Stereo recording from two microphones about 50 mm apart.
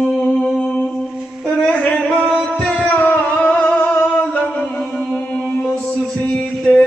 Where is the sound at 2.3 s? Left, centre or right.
Centre.